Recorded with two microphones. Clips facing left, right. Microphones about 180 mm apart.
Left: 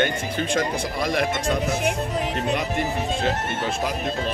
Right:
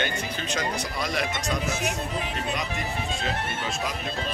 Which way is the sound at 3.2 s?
60° left (ahead or behind).